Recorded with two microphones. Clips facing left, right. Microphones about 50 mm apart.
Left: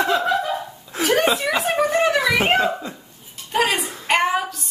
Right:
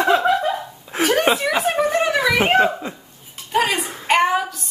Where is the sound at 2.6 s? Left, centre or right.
Right.